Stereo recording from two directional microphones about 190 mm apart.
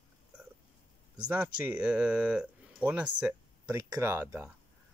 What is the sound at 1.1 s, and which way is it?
Speech, 5° right (ahead or behind).